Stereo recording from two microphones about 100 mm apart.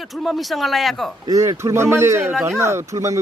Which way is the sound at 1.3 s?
30° right (ahead or behind).